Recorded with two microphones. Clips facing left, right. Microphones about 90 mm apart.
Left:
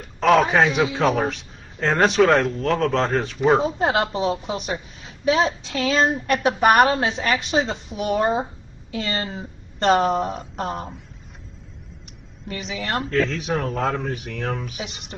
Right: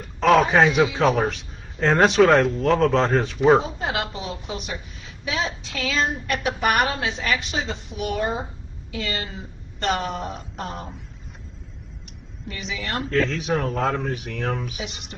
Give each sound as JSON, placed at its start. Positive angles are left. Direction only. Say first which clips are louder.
{"t": 0.2, "sound": "speech", "louder": "even", "side_deg": 0}
{"t": 3.6, "sound": "a woman's voice", "louder": "left 6 dB", "side_deg": 40}
{"t": 12.7, "sound": "a woman's voice", "louder": "left 3 dB", "side_deg": 40}
{"t": 13.1, "sound": "speech", "louder": "right 2 dB", "side_deg": 0}